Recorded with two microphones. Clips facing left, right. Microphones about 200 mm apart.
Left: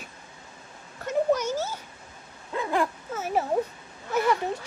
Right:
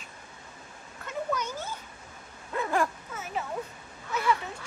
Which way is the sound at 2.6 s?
20° left (ahead or behind).